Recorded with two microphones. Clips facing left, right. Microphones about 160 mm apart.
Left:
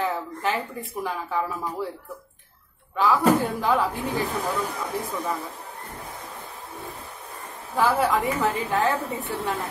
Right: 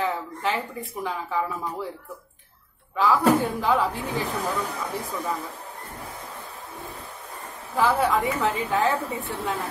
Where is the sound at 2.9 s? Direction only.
Centre (ahead or behind).